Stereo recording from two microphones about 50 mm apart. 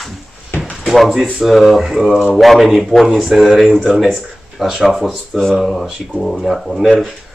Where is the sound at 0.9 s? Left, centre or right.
Centre.